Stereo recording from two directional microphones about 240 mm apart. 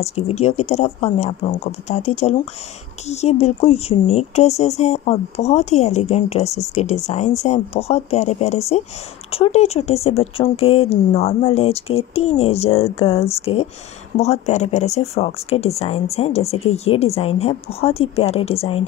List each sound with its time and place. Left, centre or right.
0.0 s speech: left